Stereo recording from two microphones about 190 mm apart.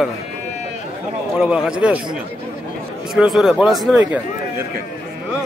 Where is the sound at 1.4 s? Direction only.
5° right (ahead or behind).